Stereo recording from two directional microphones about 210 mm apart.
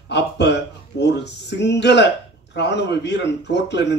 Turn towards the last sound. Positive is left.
turn(degrees=55)  # may be behind; listen again after turning